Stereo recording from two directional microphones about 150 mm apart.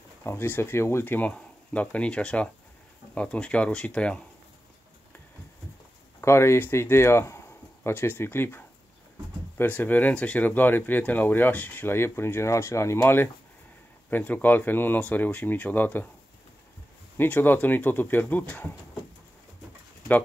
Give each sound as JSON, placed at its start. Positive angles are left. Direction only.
{"t": 0.2, "sound": "speech", "side_deg": 15}
{"t": 6.2, "sound": "speech", "side_deg": 15}
{"t": 17.2, "sound": "speech", "side_deg": 15}